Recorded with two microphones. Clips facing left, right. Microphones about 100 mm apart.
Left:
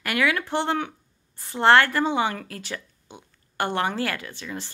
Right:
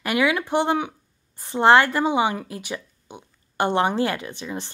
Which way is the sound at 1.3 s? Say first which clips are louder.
Right 2 dB; 20° right (ahead or behind).